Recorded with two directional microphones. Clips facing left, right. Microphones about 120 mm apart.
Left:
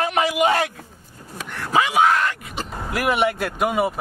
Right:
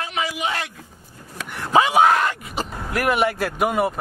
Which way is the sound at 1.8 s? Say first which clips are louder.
Right 2 dB; 30° right (ahead or behind).